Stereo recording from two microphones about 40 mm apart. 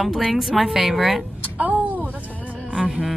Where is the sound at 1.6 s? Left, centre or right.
Right.